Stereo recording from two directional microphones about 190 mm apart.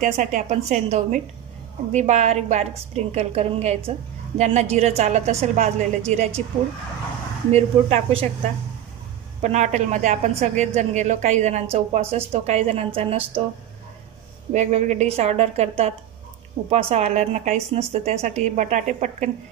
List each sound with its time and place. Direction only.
0.0 s a woman's voice: 40° right (ahead or behind)
7.5 s a woman's voice: 30° right (ahead or behind)
9.4 s a woman's voice: 40° right (ahead or behind)
14.5 s a woman's voice: 40° right (ahead or behind)